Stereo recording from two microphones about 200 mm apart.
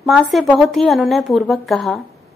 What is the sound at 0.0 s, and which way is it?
A woman's voice, centre (ahead or behind).